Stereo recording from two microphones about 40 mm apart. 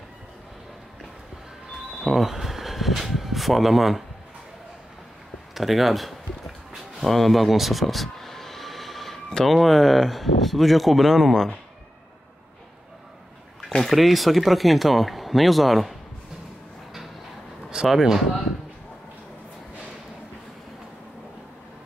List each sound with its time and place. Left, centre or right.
2.0 s speech: centre
5.5 s speech: centre
6.7 s vehicle: centre
9.5 s speech: centre
13.6 s speech: centre
17.6 s a sound: centre
17.9 s speech: centre